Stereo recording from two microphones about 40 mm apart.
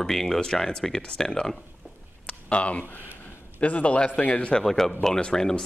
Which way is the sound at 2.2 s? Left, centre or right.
Left.